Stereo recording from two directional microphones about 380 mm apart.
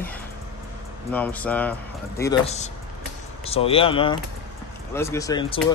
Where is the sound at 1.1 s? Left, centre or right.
Centre.